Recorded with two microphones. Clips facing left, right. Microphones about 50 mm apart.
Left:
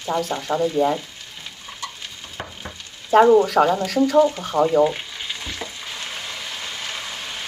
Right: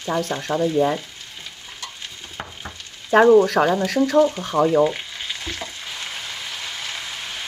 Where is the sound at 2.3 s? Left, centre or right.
Centre.